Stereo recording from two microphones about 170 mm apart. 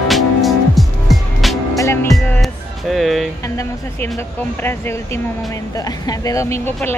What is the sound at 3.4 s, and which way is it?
Music, 20° left (ahead or behind).